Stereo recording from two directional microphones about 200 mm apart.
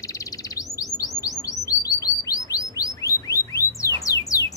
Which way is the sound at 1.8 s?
15° left (ahead or behind).